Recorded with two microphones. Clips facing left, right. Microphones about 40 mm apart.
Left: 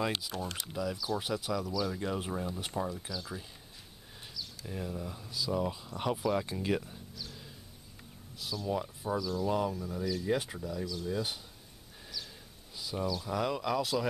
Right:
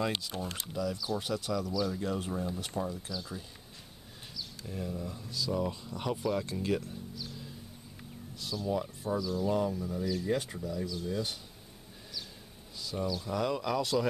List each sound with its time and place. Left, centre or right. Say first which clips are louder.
0.3 s speech: even; centre
2.0 s speech: right 1 dB; centre
4.6 s speech: right 1 dB; centre
8.4 s speech: right 1 dB; centre
9.2 s speech: right 1 dB; centre
9.5 s speech: right 2 dB; centre
10.2 s speech: even; centre
10.6 s speech: right 1 dB; centre
12.7 s a sound: even; centre
13.0 s speech: even; centre